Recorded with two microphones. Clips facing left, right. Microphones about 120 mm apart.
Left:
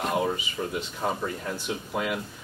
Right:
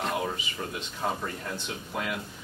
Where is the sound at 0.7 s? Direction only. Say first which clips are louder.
Left 1 dB; 5° left (ahead or behind).